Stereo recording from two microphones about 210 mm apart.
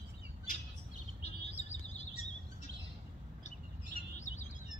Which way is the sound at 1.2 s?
30° left (ahead or behind).